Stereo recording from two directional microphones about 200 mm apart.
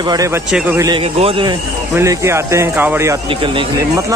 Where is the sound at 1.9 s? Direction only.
15° right (ahead or behind).